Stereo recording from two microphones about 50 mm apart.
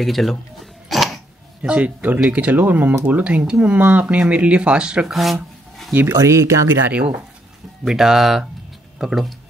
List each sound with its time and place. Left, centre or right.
0.0 s speech: centre
0.8 s a sound: centre
1.6 s speech: right
5.1 s a sound: centre
6.0 s speech: right
7.8 s speech: centre